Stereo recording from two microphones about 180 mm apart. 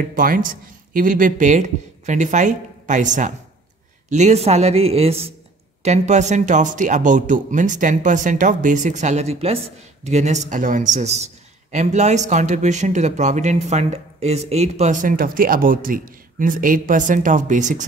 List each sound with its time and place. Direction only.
0.1 s speech: 50° right (ahead or behind)